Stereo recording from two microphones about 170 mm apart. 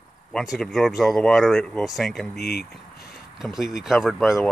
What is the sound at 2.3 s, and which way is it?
Speech, 70° left (ahead or behind).